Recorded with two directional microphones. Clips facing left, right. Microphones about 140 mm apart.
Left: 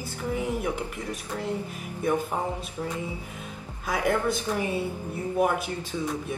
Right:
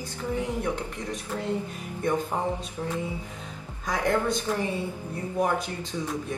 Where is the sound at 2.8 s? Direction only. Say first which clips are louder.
Left 1 dB; centre (ahead or behind).